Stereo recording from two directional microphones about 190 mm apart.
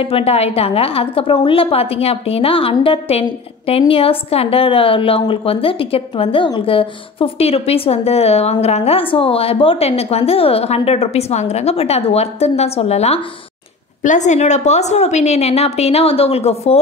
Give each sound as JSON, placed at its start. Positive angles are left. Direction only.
{"t": 0.0, "sound": "a woman's voice", "side_deg": 30}